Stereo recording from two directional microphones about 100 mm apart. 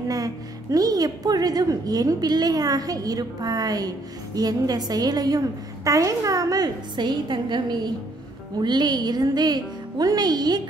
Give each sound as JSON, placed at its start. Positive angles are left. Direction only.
{"t": 0.1, "sound": "a woman's voice", "side_deg": -35}